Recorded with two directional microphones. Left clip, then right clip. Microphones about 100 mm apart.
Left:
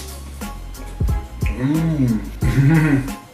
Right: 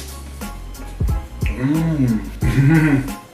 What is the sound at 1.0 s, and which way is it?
Music, centre (ahead or behind).